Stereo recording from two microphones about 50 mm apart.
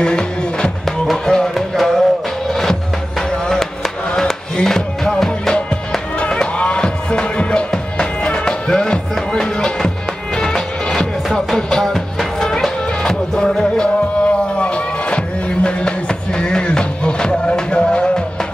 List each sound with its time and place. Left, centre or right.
0.0 s music: centre
1.5 s music: centre
6.1 s music: centre